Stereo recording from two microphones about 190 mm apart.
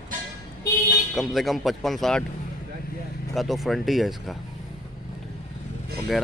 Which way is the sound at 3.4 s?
Centre (ahead or behind).